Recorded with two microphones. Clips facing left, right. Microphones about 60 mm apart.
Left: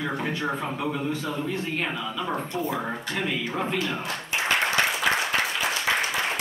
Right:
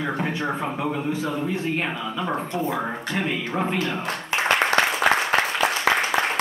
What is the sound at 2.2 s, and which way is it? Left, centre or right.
Speech, centre.